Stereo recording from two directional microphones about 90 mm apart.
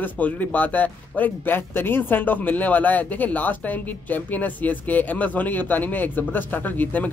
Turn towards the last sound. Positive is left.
turn(degrees=20)  # may be behind; listen again after turning